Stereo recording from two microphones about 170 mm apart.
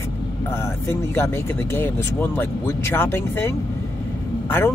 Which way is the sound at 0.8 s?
15° left (ahead or behind).